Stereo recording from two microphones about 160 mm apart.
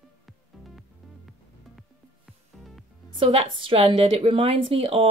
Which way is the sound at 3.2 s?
35° right (ahead or behind).